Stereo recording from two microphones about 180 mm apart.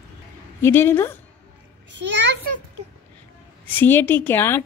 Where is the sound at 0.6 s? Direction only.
15° left (ahead or behind).